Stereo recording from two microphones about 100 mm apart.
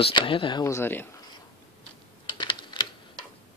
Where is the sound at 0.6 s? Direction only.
25° left (ahead or behind).